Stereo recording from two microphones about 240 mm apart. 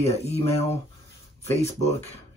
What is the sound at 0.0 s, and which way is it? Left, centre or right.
Speech, left.